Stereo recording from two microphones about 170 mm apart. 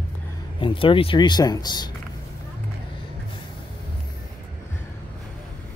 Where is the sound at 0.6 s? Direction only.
30° left (ahead or behind).